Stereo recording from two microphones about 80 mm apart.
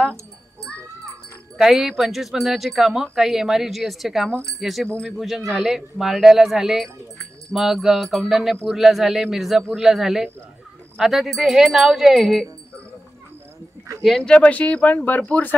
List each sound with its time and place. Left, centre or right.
1.6 s speech: centre
14.0 s speech: centre